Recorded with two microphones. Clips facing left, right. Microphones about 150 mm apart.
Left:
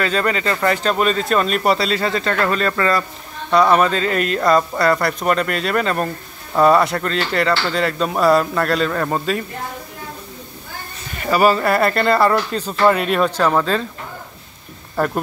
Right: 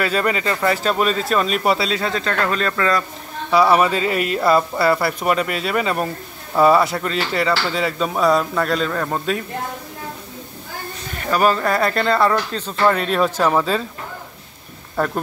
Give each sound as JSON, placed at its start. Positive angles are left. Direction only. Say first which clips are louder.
{"t": 0.0, "sound": "speech", "louder": "left 1 dB", "side_deg": -10}
{"t": 11.2, "sound": "speech", "louder": "left 2 dB", "side_deg": 5}
{"t": 13.4, "sound": "speech", "louder": "left 1 dB", "side_deg": -10}
{"t": 15.0, "sound": "speech", "louder": "left 1 dB", "side_deg": 5}